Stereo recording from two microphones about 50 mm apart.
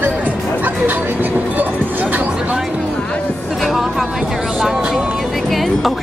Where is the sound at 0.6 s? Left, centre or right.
Right.